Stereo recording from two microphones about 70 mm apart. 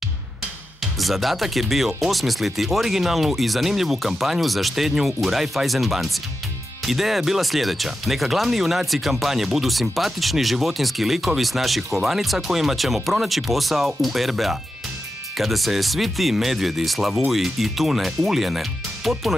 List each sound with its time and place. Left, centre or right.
0.9 s speech: centre